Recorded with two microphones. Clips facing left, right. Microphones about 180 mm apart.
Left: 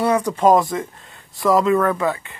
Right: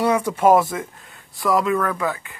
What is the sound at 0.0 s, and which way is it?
Speech, 10° right (ahead or behind).